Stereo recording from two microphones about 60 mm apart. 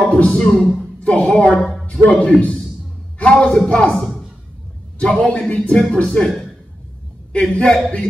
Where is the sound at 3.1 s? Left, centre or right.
Left.